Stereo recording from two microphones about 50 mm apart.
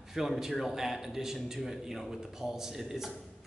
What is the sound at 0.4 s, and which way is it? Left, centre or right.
A man's voice, centre.